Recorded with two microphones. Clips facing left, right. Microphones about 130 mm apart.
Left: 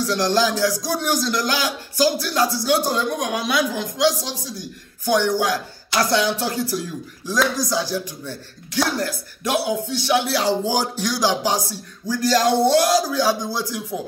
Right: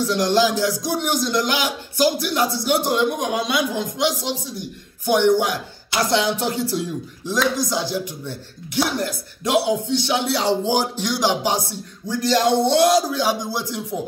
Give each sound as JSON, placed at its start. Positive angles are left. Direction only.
{"t": 0.0, "sound": "speech", "side_deg": -20}